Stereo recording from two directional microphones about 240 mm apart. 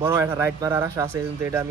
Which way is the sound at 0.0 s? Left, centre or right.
Centre.